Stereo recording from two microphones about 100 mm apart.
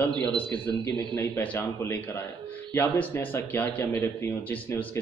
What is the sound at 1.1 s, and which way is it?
Speech, 25° left (ahead or behind).